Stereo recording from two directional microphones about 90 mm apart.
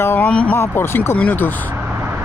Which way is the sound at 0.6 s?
25° left (ahead or behind).